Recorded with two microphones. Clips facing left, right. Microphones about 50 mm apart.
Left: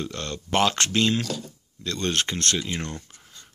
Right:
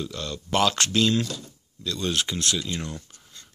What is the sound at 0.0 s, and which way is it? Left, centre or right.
Speech, left.